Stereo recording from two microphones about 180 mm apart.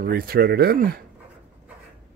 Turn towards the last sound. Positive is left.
turn(degrees=-55)  # may be behind; listen again after turning